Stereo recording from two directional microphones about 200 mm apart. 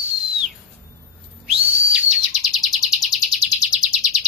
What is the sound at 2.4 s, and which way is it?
Chirp, centre (ahead or behind).